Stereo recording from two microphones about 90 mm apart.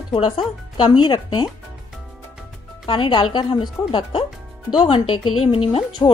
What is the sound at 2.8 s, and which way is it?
Speech, 70° left (ahead or behind).